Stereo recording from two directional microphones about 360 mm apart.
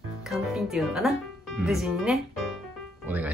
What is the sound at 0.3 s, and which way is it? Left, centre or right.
Speech, centre.